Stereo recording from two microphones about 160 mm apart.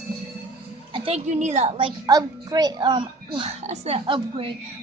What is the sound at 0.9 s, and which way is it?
Speech, 35° right (ahead or behind).